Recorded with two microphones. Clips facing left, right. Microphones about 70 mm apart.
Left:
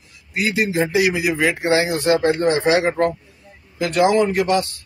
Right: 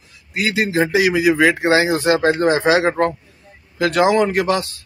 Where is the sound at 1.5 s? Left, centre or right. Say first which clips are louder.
Right 3 dB; right.